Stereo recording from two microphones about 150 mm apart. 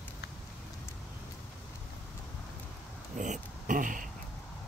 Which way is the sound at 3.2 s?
60° right (ahead or behind).